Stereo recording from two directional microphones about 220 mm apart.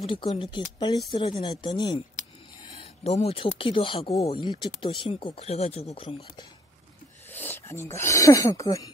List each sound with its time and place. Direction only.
0.0 s speech: 25° left (ahead or behind)
7.2 s speech: 10° left (ahead or behind)